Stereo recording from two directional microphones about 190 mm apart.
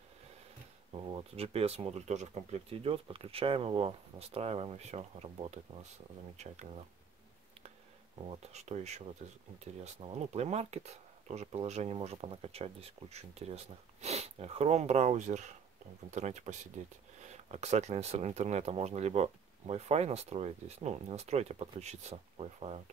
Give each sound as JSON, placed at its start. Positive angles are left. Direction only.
{"t": 1.0, "sound": "speech", "side_deg": -30}
{"t": 8.2, "sound": "speech", "side_deg": -35}